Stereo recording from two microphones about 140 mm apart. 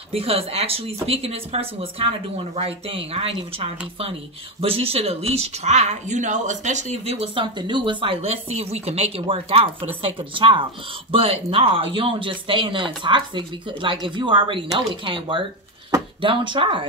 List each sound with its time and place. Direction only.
0.1 s speech: 45° right (ahead or behind)